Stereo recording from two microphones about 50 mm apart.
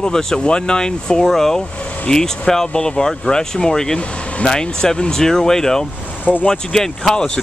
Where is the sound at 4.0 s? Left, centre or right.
Left.